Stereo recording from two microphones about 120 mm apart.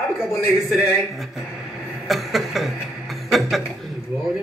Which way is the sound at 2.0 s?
Centre (ahead or behind).